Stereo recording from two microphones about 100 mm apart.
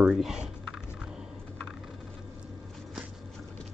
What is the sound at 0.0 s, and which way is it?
Speech, 5° right (ahead or behind).